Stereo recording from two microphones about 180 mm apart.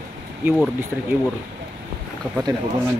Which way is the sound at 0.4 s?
10° right (ahead or behind).